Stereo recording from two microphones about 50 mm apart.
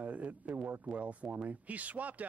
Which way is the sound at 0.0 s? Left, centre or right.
Right.